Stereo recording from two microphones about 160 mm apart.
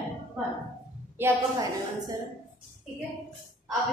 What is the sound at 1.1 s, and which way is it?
A woman's voice, 20° right (ahead or behind).